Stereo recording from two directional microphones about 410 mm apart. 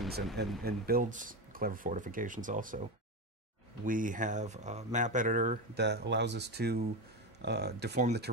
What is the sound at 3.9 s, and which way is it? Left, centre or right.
Speech, centre.